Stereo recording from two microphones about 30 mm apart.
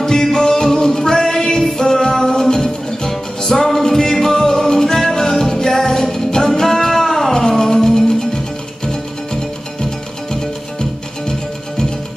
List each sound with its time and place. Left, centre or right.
0.0 s music: centre
6.6 s music: centre